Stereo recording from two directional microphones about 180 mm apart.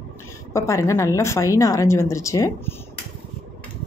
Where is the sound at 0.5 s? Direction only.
15° left (ahead or behind).